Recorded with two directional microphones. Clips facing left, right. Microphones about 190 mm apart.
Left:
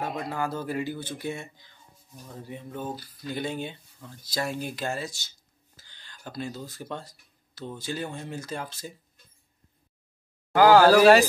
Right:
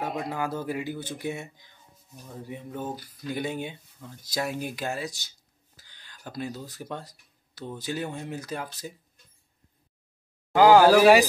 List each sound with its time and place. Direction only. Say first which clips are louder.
0.0 s speech: even; 10° right (ahead or behind)
10.5 s speech: even; 15° right (ahead or behind)